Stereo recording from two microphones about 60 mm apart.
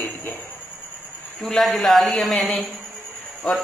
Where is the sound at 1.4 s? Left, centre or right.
Centre.